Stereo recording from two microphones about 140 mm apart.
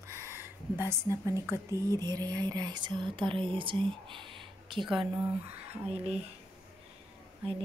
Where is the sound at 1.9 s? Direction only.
25° right (ahead or behind).